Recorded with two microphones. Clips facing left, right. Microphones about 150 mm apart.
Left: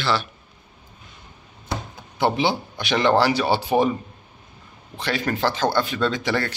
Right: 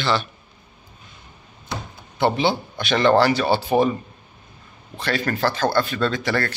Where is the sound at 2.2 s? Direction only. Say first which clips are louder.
Right 1 dB; 15° left (ahead or behind).